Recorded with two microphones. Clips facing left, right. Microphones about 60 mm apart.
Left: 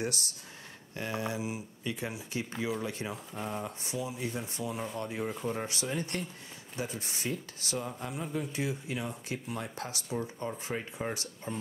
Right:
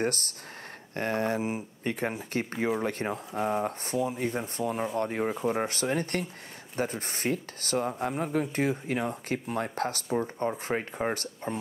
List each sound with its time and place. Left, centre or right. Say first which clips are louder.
0.0 s speech: right 6 dB; right
10.0 s speech: right 4 dB; right